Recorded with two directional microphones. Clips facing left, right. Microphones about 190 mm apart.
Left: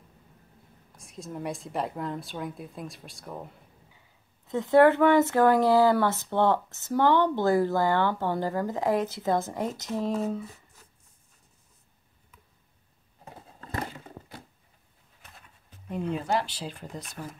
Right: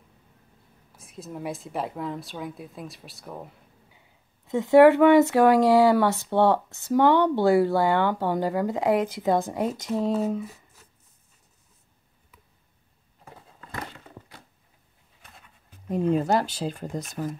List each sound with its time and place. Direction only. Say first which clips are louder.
0.9 s a woman's voice: even; 5° right (ahead or behind)
4.5 s speech: right 4 dB; 15° right (ahead or behind)
15.9 s speech: right 6 dB; 40° right (ahead or behind)